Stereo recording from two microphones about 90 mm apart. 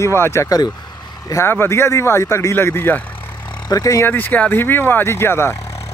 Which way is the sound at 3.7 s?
40° left (ahead or behind).